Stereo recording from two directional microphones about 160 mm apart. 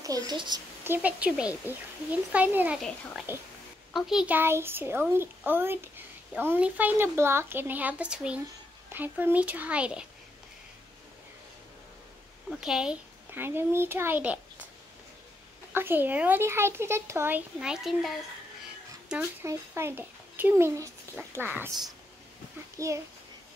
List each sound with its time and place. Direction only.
0.0 s a woman's voice: 20° right (ahead or behind)
0.8 s speech: 10° right (ahead or behind)
12.4 s speech: 5° right (ahead or behind)
15.7 s speech: 15° right (ahead or behind)
17.6 s speech: 5° right (ahead or behind)
19.4 s speech: 15° right (ahead or behind)
22.8 s a woman's voice: 20° right (ahead or behind)